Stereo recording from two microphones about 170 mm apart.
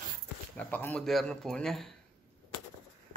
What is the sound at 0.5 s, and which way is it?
Speech, 10° left (ahead or behind).